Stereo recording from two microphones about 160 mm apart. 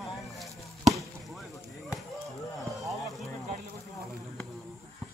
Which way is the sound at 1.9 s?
Centre (ahead or behind).